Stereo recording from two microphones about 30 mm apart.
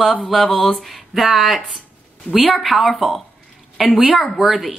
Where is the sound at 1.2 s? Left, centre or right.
Centre.